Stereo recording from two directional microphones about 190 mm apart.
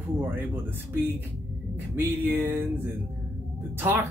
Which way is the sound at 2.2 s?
10° right (ahead or behind).